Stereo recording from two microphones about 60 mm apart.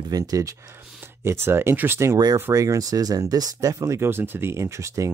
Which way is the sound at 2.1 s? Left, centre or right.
Right.